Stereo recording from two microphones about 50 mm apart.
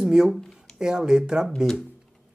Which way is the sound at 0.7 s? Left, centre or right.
Centre.